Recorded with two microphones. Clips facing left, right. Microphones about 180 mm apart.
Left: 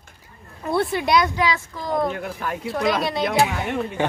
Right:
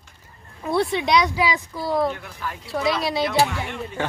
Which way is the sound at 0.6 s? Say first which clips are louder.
Even; centre (ahead or behind).